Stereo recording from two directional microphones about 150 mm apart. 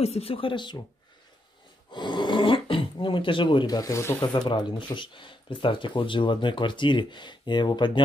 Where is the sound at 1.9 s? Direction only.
30° left (ahead or behind).